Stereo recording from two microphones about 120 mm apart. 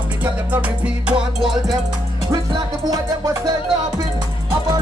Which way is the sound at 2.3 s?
30° right (ahead or behind).